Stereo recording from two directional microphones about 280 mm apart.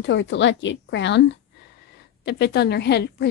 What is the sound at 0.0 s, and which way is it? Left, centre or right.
A woman's voice, left.